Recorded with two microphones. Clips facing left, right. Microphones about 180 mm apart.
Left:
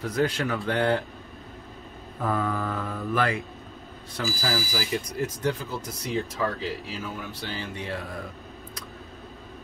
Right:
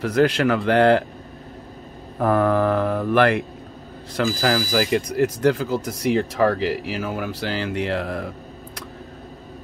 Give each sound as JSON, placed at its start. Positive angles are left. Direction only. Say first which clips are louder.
{"t": 0.0, "sound": "speech", "louder": "right 8 dB", "side_deg": -80}
{"t": 2.1, "sound": "speech", "louder": "right 9 dB", "side_deg": -65}
{"t": 4.2, "sound": "speech", "louder": "right 8 dB", "side_deg": -60}